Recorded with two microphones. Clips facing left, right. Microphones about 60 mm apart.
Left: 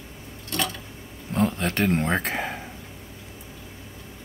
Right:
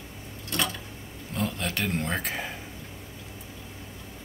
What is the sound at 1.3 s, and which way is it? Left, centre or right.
A man's voice, left.